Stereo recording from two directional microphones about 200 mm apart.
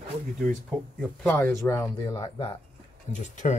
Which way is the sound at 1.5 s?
15° left (ahead or behind).